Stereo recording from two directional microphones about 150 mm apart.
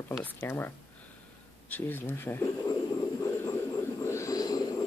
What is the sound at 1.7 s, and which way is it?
Speech, 10° left (ahead or behind).